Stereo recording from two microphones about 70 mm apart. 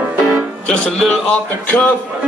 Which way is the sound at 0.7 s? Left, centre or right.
Centre.